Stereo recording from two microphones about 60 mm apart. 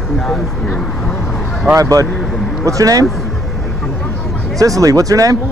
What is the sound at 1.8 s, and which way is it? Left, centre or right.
Speech, right.